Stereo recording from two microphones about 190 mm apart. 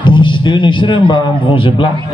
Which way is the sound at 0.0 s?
25° left (ahead or behind).